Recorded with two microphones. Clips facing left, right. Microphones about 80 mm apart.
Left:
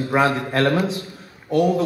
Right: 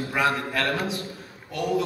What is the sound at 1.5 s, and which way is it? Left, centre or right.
Speech, left.